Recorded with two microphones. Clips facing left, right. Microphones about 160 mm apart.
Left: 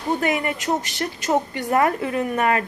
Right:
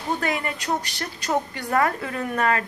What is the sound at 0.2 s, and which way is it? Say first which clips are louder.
Speech: left 4 dB; 20° left (ahead or behind).